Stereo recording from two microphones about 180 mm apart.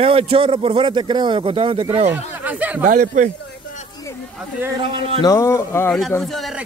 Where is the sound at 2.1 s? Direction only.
10° right (ahead or behind).